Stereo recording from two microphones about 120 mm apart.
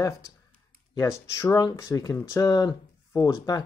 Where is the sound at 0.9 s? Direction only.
25° left (ahead or behind).